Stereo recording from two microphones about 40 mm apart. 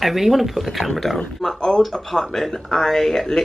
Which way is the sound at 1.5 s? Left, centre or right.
Centre.